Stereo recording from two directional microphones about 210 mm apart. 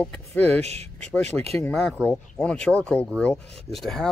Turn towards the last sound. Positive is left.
turn(degrees=0)  # may be behind; listen again after turning